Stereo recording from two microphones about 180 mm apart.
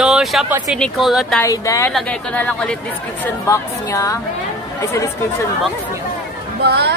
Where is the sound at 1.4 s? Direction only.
15° left (ahead or behind).